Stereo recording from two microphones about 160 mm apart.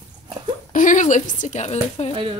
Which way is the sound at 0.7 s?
55° left (ahead or behind).